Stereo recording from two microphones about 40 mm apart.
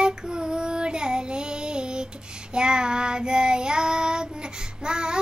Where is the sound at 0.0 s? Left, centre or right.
Centre.